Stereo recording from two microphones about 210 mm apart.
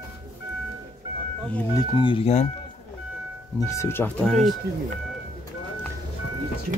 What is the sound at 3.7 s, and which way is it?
Speech, 10° left (ahead or behind).